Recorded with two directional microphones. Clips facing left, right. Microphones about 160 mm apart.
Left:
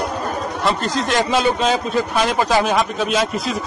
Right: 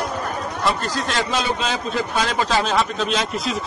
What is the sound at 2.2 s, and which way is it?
Speech, 15° left (ahead or behind).